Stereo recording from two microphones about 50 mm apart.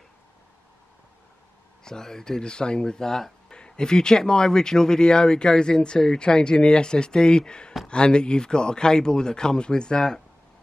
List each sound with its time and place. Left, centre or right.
1.9 s speech: centre